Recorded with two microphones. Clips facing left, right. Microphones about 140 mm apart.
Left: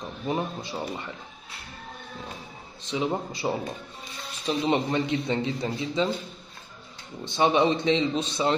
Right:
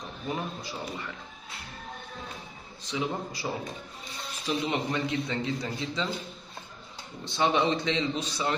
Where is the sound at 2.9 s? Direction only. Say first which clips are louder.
Left 4 dB; 25° left (ahead or behind).